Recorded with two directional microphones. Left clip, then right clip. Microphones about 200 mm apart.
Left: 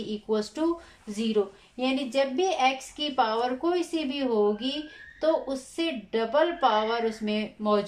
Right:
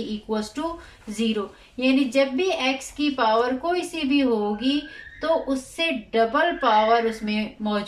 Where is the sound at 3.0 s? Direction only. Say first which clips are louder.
Right 8 dB; 30° left (ahead or behind).